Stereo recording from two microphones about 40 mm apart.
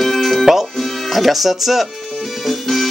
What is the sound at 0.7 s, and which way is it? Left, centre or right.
Speech, centre.